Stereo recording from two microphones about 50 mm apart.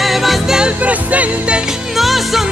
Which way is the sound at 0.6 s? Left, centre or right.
Right.